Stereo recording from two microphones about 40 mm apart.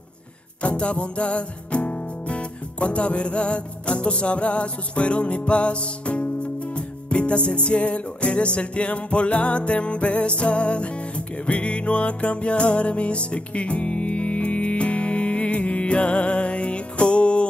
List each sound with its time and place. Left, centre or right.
0.6 s music: left